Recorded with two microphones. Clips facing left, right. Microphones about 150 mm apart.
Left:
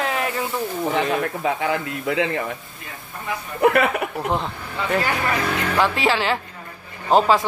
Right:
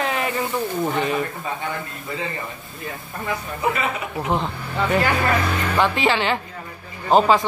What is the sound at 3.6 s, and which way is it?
Speech, 65° left (ahead or behind).